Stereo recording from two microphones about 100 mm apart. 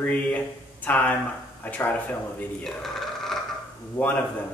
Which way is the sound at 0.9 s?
15° left (ahead or behind).